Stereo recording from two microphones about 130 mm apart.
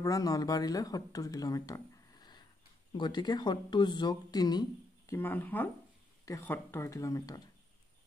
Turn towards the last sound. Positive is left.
turn(degrees=25)  # may be behind; listen again after turning